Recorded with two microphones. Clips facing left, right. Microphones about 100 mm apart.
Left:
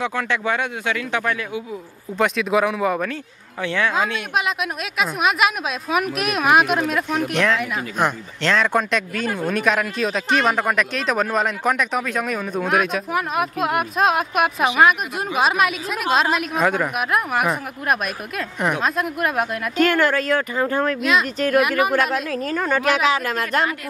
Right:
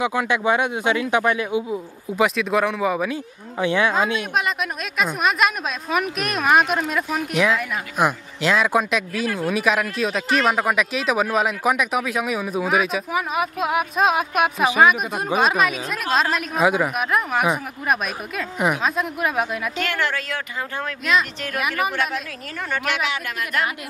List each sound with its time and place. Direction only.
0.0 s speech: 15° right (ahead or behind)
2.1 s speech: centre (ahead or behind)
3.6 s speech: 15° right (ahead or behind)
4.5 s speech: centre (ahead or behind)
19.8 s speech: 45° left (ahead or behind)
21.5 s speech: centre (ahead or behind)
22.5 s a woman's voice: 40° left (ahead or behind)